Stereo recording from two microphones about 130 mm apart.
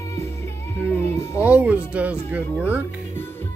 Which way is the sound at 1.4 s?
10° right (ahead or behind).